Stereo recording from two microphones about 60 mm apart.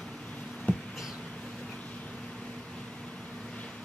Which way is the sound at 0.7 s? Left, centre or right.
Left.